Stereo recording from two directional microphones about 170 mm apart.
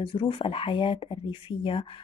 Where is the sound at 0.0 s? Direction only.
30° left (ahead or behind).